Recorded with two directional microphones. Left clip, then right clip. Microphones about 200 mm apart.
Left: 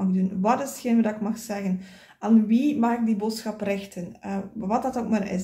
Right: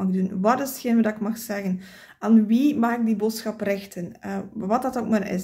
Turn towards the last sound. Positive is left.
turn(degrees=-35)  # may be behind; listen again after turning